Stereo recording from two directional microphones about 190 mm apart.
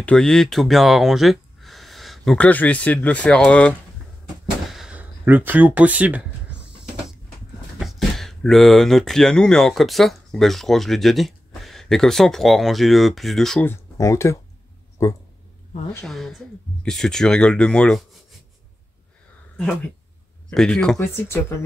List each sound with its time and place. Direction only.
0.0 s speech: 5° left (ahead or behind)
4.6 s a sound: centre (ahead or behind)
7.8 s speech: centre (ahead or behind)
15.9 s speech: 5° left (ahead or behind)
20.4 s speech: 5° left (ahead or behind)